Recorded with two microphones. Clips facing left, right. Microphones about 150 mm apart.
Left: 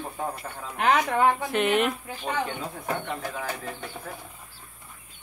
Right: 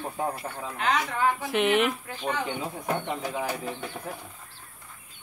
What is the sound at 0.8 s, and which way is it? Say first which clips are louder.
Speech: left 5 dB; 60° left (ahead or behind).